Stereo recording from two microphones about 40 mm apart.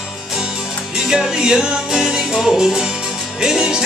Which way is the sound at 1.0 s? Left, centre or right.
Centre.